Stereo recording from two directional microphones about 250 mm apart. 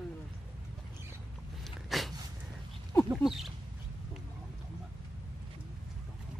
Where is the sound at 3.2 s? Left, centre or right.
Centre.